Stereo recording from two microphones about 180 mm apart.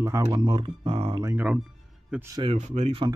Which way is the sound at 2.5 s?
40° right (ahead or behind).